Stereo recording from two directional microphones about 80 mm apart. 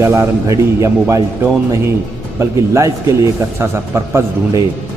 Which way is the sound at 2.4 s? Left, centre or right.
Right.